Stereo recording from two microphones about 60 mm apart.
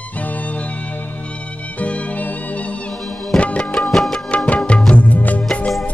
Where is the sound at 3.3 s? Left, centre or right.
Left.